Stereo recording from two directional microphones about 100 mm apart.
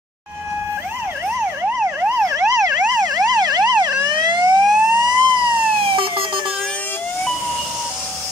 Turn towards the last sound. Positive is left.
turn(degrees=-60)  # may be behind; listen again after turning